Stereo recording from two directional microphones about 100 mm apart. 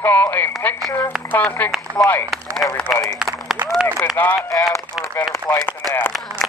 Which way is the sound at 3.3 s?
30° right (ahead or behind).